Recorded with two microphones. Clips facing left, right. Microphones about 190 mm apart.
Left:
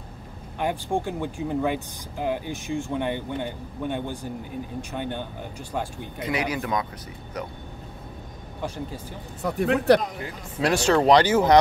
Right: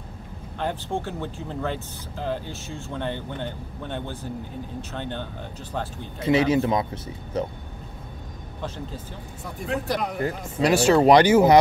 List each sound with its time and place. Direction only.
0.6 s speech: 15° left (ahead or behind)
6.1 s speech: 25° right (ahead or behind)
8.6 s speech: 10° left (ahead or behind)
9.4 s speech: 70° left (ahead or behind)
10.0 s speech: 50° right (ahead or behind)
10.6 s speech: 5° right (ahead or behind)